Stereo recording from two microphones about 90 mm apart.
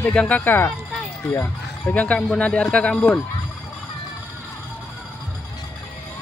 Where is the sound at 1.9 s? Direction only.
15° left (ahead or behind).